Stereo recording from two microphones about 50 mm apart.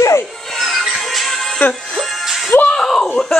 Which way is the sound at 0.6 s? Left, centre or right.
Centre.